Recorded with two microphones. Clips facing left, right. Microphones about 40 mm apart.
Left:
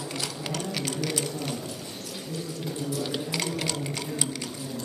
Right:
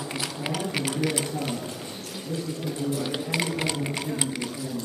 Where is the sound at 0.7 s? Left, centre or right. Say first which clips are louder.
Right 3 dB; centre.